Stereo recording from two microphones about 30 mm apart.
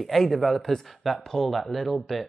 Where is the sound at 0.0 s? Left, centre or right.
Centre.